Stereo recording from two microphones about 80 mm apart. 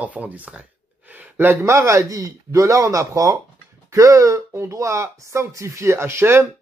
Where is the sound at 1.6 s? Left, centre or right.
Right.